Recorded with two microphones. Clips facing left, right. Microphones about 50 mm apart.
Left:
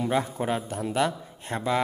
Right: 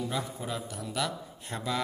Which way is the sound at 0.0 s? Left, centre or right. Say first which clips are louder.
Left 8 dB; left.